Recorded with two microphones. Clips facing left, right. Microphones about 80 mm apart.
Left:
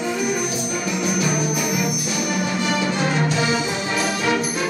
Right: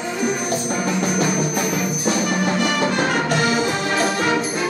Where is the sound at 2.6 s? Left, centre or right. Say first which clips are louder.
Right 2 dB; right.